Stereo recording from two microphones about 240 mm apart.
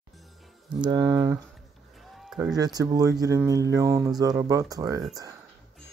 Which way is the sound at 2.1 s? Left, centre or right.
Centre.